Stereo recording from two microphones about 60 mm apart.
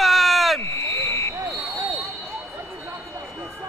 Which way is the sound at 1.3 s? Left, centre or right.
Right.